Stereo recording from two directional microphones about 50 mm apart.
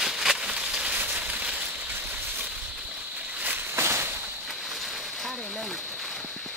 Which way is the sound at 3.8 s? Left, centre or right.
Right.